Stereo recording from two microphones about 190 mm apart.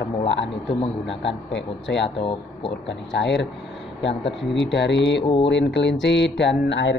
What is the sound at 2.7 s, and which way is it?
Speech, 70° left (ahead or behind).